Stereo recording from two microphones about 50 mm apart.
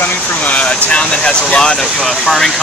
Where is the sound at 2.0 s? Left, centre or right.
Centre.